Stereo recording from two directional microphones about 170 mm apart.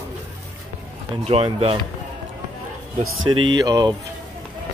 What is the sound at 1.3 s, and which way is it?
Speech, 35° right (ahead or behind).